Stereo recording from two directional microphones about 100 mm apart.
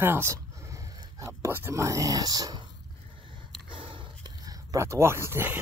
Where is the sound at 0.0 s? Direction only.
25° right (ahead or behind); by 2.6 s 40° right (ahead or behind).